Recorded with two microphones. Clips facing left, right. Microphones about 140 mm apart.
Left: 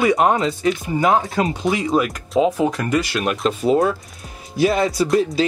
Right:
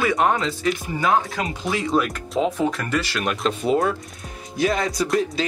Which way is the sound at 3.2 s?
5° left (ahead or behind).